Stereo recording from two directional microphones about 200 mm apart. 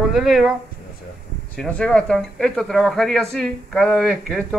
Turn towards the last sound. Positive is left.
turn(degrees=5)  # may be behind; listen again after turning